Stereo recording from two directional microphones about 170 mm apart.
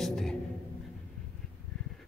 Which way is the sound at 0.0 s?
Centre (ahead or behind).